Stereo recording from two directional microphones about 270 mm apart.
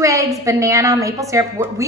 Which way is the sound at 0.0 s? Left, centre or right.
Centre.